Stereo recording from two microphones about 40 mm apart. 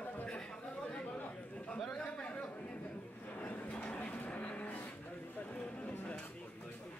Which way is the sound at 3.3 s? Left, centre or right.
Left.